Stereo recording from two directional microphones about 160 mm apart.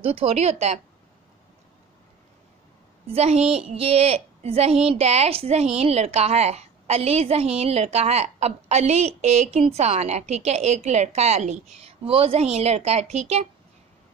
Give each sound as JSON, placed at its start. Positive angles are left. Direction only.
{"t": 0.0, "sound": "a woman's voice", "side_deg": -40}
{"t": 3.1, "sound": "a woman's voice", "side_deg": -40}